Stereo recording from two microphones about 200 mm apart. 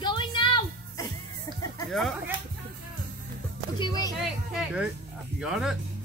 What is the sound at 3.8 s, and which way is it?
Speech, 20° left (ahead or behind).